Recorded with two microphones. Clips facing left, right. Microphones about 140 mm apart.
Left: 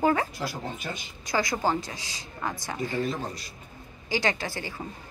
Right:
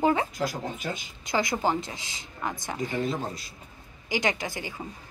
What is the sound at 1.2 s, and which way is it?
A woman's voice, 20° right (ahead or behind).